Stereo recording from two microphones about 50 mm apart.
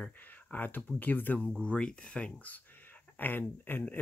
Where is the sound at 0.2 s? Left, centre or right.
Left.